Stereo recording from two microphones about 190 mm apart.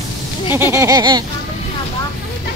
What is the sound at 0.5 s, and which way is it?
Speech, 15° right (ahead or behind).